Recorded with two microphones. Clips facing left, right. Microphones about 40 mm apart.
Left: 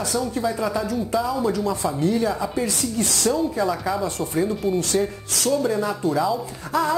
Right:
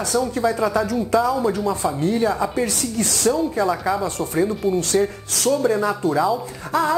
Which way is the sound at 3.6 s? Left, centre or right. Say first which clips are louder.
Right 2 dB; centre.